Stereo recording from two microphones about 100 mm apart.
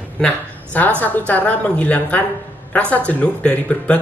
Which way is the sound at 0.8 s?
15° left (ahead or behind).